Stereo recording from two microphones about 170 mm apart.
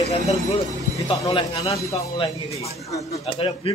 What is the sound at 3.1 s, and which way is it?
Speech, 35° left (ahead or behind).